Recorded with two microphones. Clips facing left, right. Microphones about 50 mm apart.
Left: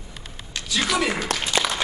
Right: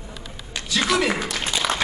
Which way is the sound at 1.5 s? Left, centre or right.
Left.